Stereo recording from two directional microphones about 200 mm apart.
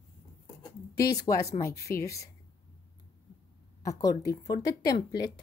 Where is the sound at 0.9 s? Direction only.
20° left (ahead or behind).